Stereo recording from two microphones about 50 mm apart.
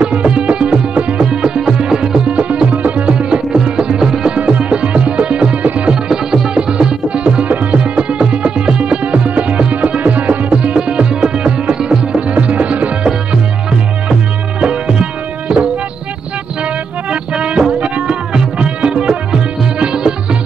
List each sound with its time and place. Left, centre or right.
0.0 s music: right
1.2 s music: centre
4.4 s music: right
6.0 s music: centre; by 12.9 s right
13.0 s music: centre
17.1 s music: right